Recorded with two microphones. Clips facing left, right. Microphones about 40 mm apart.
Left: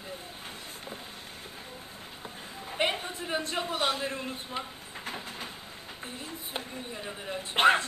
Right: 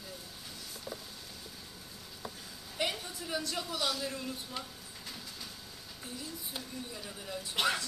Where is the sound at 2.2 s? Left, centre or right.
Left.